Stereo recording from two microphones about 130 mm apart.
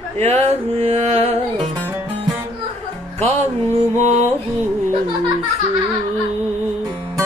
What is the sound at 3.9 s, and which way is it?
Music, 60° right (ahead or behind).